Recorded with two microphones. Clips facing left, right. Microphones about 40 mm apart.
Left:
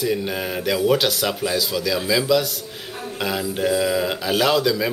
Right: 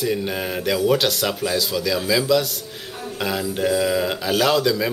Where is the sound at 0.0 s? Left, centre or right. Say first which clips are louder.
Even; centre.